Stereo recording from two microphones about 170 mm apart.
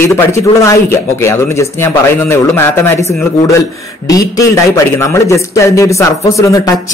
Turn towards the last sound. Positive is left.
turn(degrees=20)  # may be behind; listen again after turning